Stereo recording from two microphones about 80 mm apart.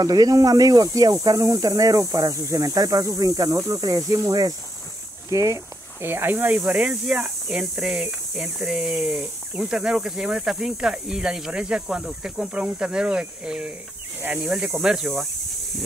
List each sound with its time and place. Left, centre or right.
0.0 s speech: right
5.9 s speech: right; by 15.2 s centre